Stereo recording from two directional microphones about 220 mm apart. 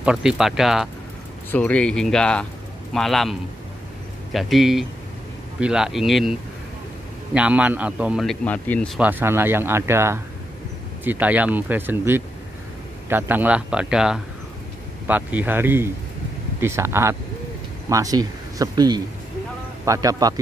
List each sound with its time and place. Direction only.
0.0 s speech: 5° right (ahead or behind)
7.3 s a man's voice: 5° right (ahead or behind)